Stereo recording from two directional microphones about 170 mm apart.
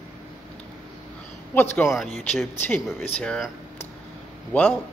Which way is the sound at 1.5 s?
10° left (ahead or behind).